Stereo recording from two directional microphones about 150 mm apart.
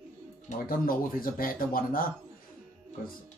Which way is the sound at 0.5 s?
70° left (ahead or behind).